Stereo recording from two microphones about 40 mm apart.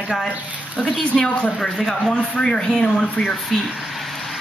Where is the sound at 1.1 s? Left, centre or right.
Centre.